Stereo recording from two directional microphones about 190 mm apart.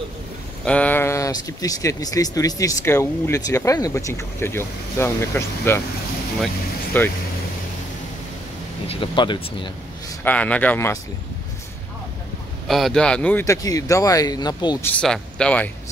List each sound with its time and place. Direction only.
0.7 s speech: 5° left (ahead or behind)
8.8 s speech: 30° left (ahead or behind)
10.2 s speech: 5° left (ahead or behind)
12.6 s speech: centre (ahead or behind); by 14.9 s 20° left (ahead or behind)
14.9 s speech: 5° left (ahead or behind)